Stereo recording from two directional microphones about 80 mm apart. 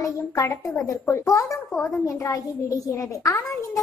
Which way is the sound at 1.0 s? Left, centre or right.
Left.